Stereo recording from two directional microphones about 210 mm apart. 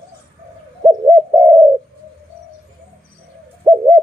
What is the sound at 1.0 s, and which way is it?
Bird, 15° right (ahead or behind).